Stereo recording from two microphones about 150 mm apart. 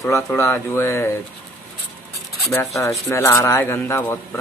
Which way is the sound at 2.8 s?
20° left (ahead or behind).